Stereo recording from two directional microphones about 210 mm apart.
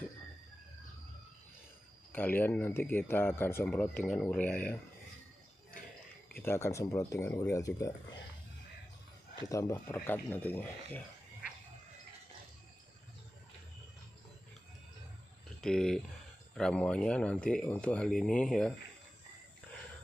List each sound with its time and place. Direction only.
2.1 s speech: 10° left (ahead or behind)
6.4 s speech: 10° left (ahead or behind)
9.5 s speech: 15° left (ahead or behind)
15.6 s speech: 5° left (ahead or behind)